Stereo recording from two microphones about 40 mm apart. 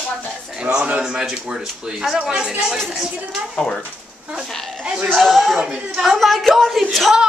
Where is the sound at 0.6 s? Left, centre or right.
Right.